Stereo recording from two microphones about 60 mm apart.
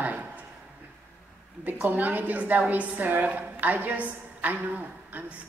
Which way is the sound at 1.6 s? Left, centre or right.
Right.